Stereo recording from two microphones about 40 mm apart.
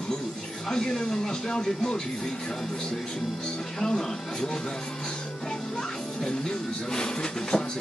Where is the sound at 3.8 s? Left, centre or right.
Centre.